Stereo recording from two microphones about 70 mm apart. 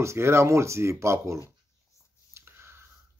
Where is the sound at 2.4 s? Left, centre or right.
Right.